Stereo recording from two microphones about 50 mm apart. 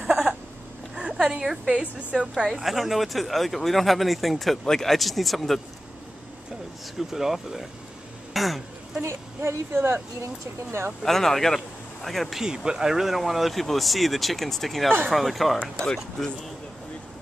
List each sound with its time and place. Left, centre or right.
0.0 s a sound: centre
0.9 s a woman's voice: centre
1.8 s a woman's voice: right
2.6 s speech: centre
7.0 s speech: centre
8.3 s a sound: centre
9.0 s speech: right
11.0 s speech: centre
12.4 s speech: centre
15.6 s speech: centre